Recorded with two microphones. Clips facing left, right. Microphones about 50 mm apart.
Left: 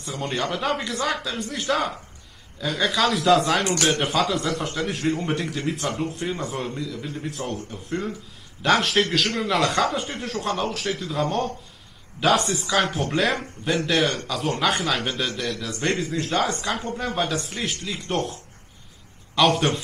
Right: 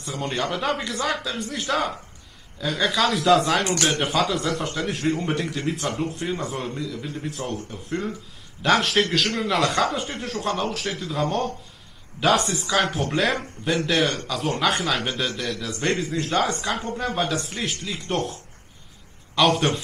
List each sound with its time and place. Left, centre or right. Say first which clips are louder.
0.0 s speech: even; centre